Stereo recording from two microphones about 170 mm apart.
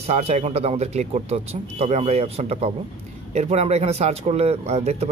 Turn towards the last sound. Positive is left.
turn(degrees=-40)  # may be behind; listen again after turning